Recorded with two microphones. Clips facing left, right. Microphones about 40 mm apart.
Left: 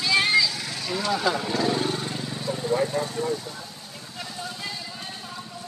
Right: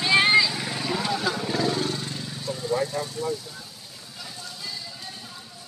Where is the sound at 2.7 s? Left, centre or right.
Left.